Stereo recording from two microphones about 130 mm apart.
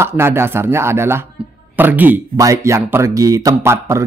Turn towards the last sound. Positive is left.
turn(degrees=-20)  # may be behind; listen again after turning